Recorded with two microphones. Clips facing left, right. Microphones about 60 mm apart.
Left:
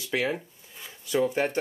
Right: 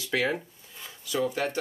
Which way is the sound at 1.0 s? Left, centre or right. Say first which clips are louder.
Left 3 dB; left.